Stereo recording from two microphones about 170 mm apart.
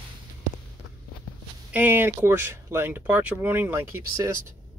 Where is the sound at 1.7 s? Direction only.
10° right (ahead or behind).